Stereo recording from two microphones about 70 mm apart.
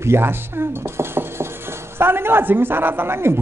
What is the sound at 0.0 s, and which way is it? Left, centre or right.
Pulleys, right.